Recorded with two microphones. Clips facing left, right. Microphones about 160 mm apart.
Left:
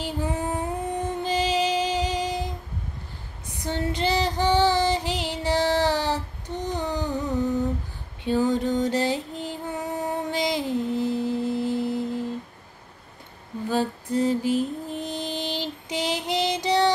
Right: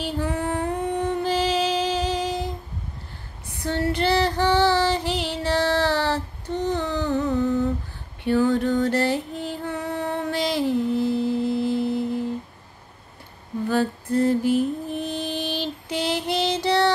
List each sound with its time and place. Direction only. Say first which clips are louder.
0.0 s female singing: right 2 dB; 15° left (ahead or behind)
1.2 s music: left 1 dB; 15° left (ahead or behind)
3.5 s female singing: right 3 dB; 15° left (ahead or behind)
8.2 s a sound: right 2 dB; 15° left (ahead or behind)
9.4 s music: right 2 dB; 15° left (ahead or behind)
13.7 s a sound: right 2 dB; 15° left (ahead or behind)
14.5 s mantra: right 3 dB; 15° right (ahead or behind)
15.0 s female singing: right 2 dB; 15° left (ahead or behind)